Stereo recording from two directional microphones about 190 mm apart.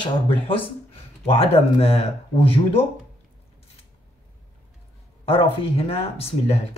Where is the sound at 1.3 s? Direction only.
30° left (ahead or behind).